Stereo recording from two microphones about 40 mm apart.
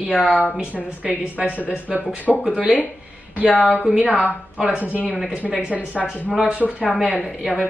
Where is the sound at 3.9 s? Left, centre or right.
Right.